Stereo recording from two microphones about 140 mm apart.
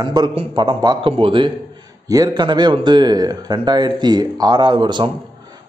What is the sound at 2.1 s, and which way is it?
Speech, 25° right (ahead or behind).